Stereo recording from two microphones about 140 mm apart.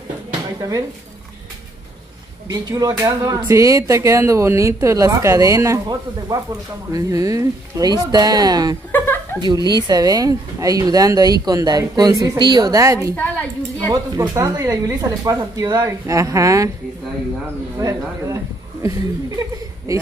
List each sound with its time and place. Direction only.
0.6 s speech: 25° right (ahead or behind)
2.4 s speech: 25° right (ahead or behind)
8.9 s chuckle: 15° left (ahead or behind)
9.7 s speech: 30° right (ahead or behind)
13.1 s a sound: 10° left (ahead or behind)
14.3 s speech: 25° right (ahead or behind)
17.7 s speech: 25° right (ahead or behind)